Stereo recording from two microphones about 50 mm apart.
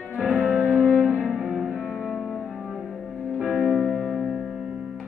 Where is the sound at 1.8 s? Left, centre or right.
Centre.